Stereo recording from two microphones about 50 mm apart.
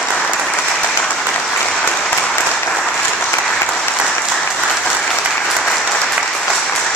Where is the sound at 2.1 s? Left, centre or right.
Left.